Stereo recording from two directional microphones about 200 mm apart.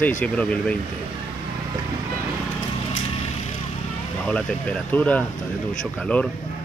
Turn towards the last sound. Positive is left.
turn(degrees=5)  # may be behind; listen again after turning